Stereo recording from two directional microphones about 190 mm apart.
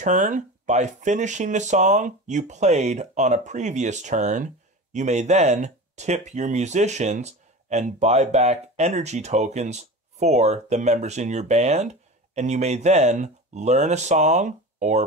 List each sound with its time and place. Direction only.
0.0 s speech: 40° right (ahead or behind)